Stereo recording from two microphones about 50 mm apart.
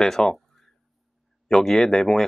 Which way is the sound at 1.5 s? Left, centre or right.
Centre.